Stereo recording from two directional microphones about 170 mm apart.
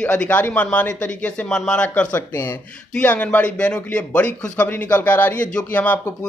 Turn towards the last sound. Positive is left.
turn(degrees=10)  # may be behind; listen again after turning